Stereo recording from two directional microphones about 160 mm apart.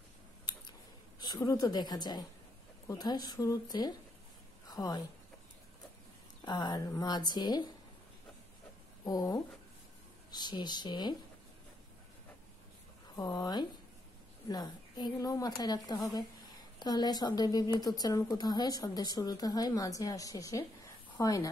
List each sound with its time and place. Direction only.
1.2 s a woman's voice: 20° left (ahead or behind)
6.4 s a woman's voice: 25° left (ahead or behind)
9.0 s a woman's voice: 20° left (ahead or behind)
13.1 s a woman's voice: 25° left (ahead or behind)